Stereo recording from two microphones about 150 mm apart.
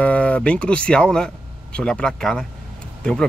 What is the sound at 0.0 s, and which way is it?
Speech, 10° left (ahead or behind).